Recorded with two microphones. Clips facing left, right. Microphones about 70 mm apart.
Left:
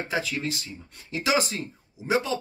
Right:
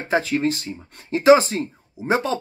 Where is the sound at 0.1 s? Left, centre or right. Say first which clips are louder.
Right 11 dB; right.